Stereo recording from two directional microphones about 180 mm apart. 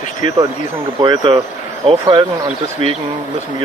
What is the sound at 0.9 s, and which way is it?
Speech, 25° right (ahead or behind).